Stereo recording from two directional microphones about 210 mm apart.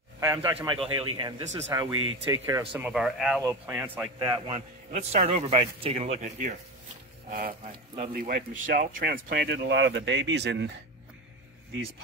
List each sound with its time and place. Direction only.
0.3 s a man's voice: 10° right (ahead or behind)
0.6 s a man's voice: 25° right (ahead or behind)
2.7 s a man's voice: 5° right (ahead or behind)
4.3 s a man's voice: 30° right (ahead or behind); by 10.7 s 55° right (ahead or behind)